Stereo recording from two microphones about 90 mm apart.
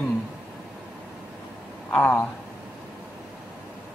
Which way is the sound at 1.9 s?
15° left (ahead or behind).